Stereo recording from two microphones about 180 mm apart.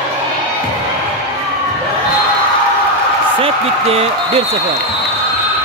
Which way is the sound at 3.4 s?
35° right (ahead or behind).